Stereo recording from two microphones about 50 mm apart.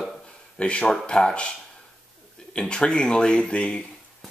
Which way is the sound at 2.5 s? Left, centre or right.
Centre.